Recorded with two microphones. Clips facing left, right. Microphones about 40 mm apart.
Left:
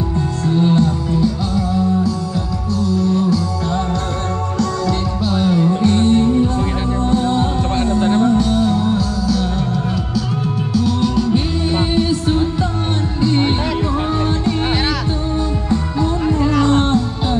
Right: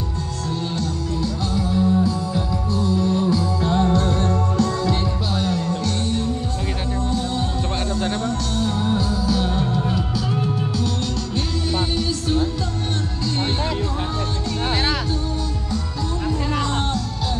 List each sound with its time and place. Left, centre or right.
0.5 s music: left
1.2 s music: centre
5.3 s music: centre
5.6 s music: left
8.4 s music: centre
9.1 s music: centre
11.7 s music: left
13.2 s music: left
16.6 s music: left